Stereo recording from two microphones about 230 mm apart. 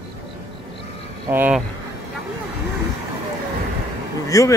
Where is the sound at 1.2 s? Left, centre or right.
Centre.